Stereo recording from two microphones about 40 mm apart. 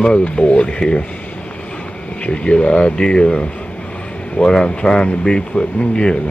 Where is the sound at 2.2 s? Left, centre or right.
Left.